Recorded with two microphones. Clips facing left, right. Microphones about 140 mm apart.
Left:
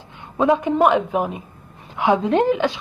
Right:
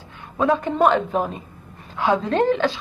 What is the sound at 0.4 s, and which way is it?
A woman's voice, 15° left (ahead or behind).